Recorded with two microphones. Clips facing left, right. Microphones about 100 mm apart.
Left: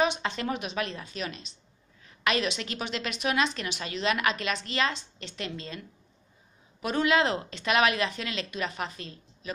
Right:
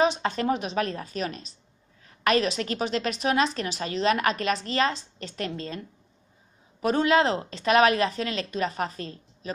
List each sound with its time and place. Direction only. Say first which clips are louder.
0.0 s a woman's voice: right 4 dB; 35° right (ahead or behind)